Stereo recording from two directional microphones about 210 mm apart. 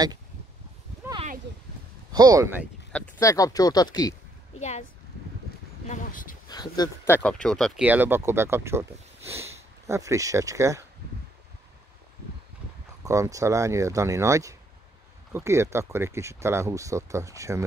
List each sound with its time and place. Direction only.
2.1 s speech: 15° right (ahead or behind)
2.9 s speech: 10° left (ahead or behind)
4.6 s speech: 35° left (ahead or behind)
5.9 s dog: 40° left (ahead or behind)
6.5 s speech: 20° left (ahead or behind); by 10.9 s 15° right (ahead or behind)
13.0 s speech: 15° right (ahead or behind)